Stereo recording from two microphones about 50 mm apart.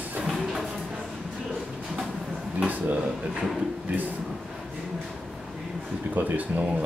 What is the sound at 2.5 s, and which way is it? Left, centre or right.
Speech, right.